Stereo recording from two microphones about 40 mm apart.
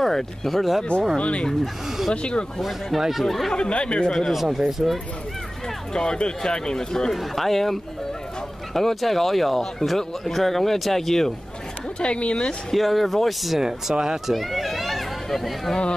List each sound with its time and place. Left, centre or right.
0.0 s speech: centre
1.2 s speech: left
1.6 s speech: centre
3.5 s speech: left
4.3 s speech: centre
5.9 s speech: left
12.0 s speech: left
12.7 s speech: centre
13.6 s speech: centre
14.3 s speech: centre